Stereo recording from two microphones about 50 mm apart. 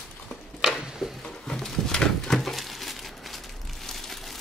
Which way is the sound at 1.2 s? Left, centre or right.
Centre.